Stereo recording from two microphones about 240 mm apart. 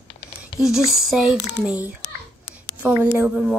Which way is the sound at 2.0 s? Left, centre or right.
Left.